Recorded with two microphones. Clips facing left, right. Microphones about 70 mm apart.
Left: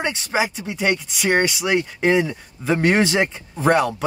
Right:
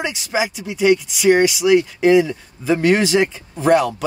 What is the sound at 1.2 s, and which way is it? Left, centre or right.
Speech, centre.